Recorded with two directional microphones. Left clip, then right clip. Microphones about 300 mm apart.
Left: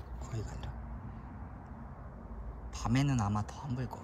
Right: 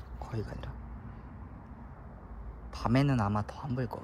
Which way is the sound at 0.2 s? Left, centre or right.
Centre.